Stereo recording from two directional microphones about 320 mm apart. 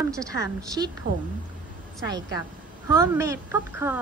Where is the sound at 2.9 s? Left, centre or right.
Centre.